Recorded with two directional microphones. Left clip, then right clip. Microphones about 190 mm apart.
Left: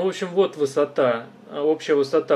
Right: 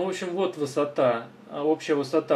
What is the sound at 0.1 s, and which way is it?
Speech, 40° left (ahead or behind).